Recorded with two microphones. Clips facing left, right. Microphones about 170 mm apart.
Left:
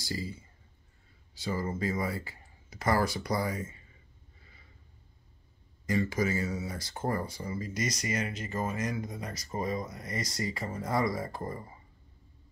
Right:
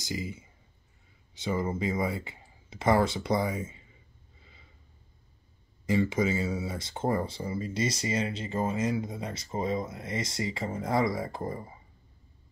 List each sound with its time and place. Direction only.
0.0 s speech: 20° right (ahead or behind)
4.4 s a sound: 20° right (ahead or behind)
5.9 s speech: 25° right (ahead or behind)